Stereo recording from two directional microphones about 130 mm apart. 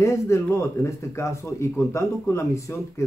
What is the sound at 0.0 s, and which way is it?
Speech, 25° left (ahead or behind).